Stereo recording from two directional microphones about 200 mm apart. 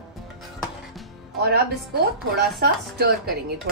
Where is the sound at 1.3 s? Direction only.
50° right (ahead or behind).